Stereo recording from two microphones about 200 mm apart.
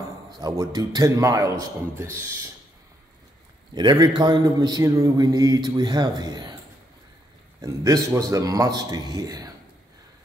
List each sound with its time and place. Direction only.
0.4 s a man's voice: 20° right (ahead or behind)
3.7 s a man's voice: 20° right (ahead or behind)
7.6 s a man's voice: 15° right (ahead or behind)